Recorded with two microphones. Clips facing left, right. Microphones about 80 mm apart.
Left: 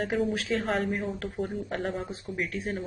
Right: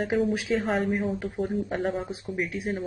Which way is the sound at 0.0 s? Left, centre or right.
Centre.